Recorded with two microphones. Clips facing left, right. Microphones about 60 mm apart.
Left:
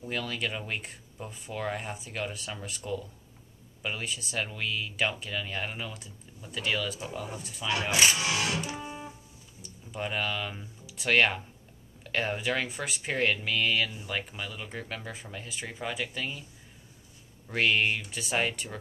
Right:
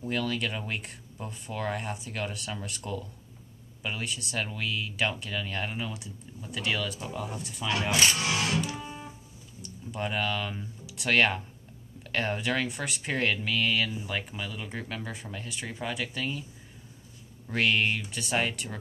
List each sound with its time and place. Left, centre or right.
0.0 s speech: centre
7.9 s speech: centre
8.5 s music: centre
9.6 s speech: centre
17.5 s speech: centre